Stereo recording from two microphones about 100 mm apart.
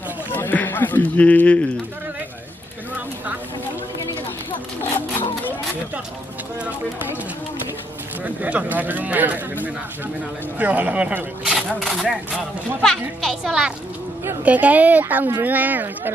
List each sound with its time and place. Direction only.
0.3 s speech: 20° left (ahead or behind)
8.2 s speech: 15° right (ahead or behind)